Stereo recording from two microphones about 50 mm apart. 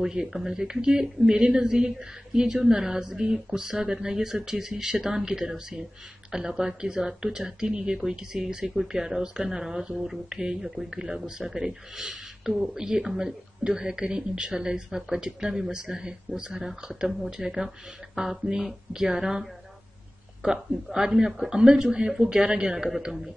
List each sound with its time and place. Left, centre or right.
0.0 s speech: centre
22.8 s speech: centre